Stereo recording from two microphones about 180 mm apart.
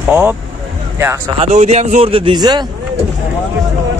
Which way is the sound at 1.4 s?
40° right (ahead or behind).